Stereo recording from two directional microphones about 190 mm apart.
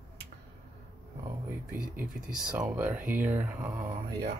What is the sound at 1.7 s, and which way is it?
Speech, 5° right (ahead or behind).